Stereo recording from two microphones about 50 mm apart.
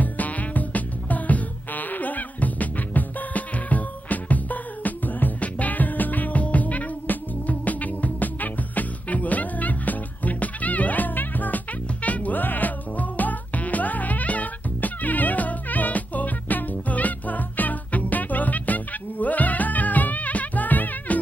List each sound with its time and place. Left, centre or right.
0.0 s music: left